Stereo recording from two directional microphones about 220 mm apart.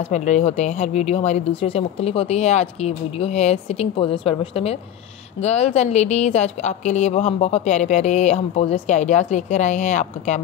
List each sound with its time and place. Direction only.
0.1 s a woman's voice: 30° left (ahead or behind)